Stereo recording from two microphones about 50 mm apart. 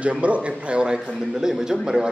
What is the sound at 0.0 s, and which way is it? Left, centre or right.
A man's voice, right.